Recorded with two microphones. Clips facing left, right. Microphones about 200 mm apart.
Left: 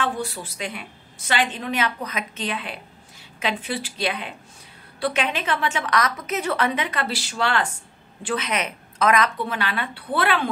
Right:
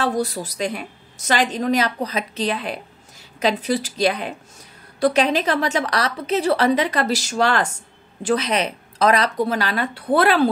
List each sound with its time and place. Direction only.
0.0 s a woman's voice: 40° right (ahead or behind)